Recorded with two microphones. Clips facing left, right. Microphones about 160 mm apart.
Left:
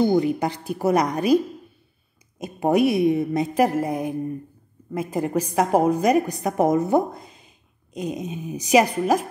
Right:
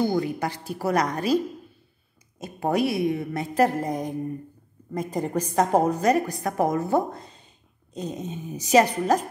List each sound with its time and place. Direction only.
0.0 s a woman's voice: 20° left (ahead or behind)